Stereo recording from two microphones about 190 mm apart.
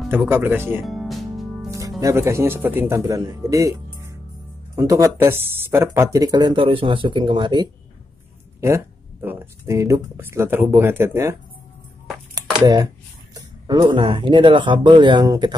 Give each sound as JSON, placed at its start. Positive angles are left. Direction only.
{"t": 0.1, "sound": "speech", "side_deg": -10}
{"t": 0.8, "sound": "music", "side_deg": 0}
{"t": 1.7, "sound": "speech", "side_deg": -15}
{"t": 12.5, "sound": "speech", "side_deg": -20}